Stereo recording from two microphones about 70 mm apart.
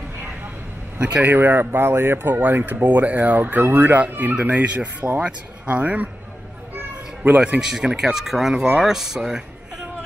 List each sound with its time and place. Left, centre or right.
0.9 s speech: centre
7.2 s speech: right
7.6 s speech: centre